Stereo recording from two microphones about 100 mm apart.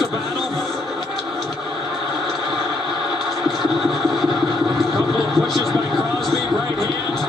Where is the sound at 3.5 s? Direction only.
Centre (ahead or behind).